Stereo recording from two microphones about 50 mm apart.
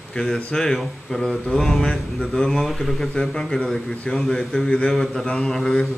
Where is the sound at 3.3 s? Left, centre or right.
Centre.